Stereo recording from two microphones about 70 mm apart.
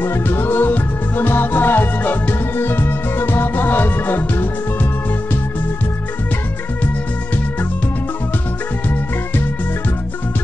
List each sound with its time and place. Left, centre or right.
0.0 s music: left